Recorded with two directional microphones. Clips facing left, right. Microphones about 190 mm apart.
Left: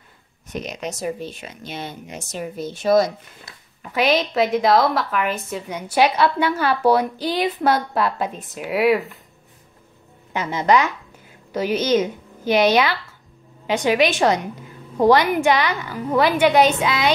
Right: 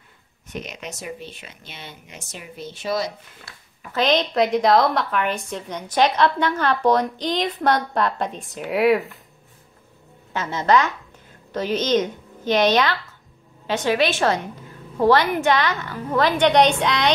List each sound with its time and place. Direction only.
0.5 s speech: 40° left (ahead or behind)
3.4 s speech: 10° left (ahead or behind)
10.3 s a woman's voice: 15° left (ahead or behind)